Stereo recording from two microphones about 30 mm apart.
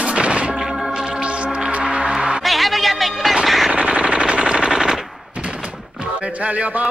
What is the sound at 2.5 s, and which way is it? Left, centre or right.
Music, centre.